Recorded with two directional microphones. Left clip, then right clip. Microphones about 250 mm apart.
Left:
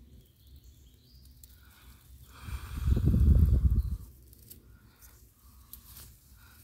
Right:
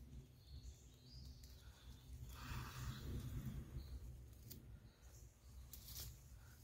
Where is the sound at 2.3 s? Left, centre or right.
Centre.